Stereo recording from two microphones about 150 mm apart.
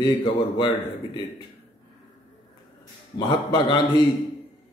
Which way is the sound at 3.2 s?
30° left (ahead or behind).